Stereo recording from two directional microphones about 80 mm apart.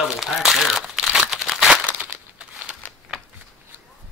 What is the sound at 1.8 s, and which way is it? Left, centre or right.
Crumpling, centre.